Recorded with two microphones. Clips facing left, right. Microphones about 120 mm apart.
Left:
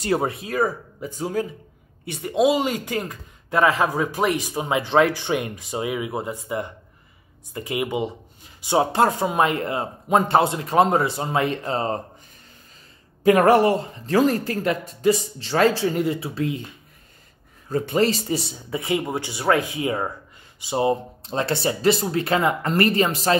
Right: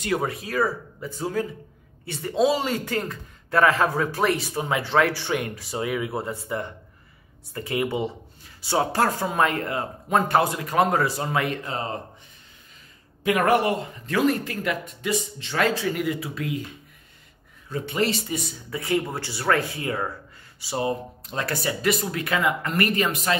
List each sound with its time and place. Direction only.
0.0 s speech: 30° left (ahead or behind)
13.2 s speech: 35° left (ahead or behind)
17.6 s speech: 40° left (ahead or behind)